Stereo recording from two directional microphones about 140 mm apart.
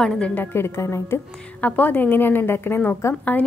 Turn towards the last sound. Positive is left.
turn(degrees=15)  # may be behind; listen again after turning